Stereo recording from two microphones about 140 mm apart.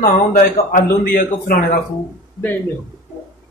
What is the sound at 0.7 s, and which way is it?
Speech, 90° left.